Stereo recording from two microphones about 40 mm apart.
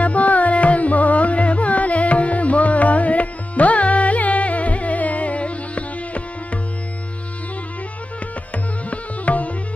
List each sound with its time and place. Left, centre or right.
0.0 s carnatic music: left
8.9 s music: left